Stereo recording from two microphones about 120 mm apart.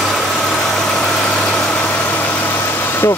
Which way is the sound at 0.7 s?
5° left (ahead or behind).